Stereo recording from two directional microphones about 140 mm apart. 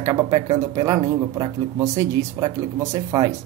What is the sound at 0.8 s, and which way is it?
Speech, 25° right (ahead or behind).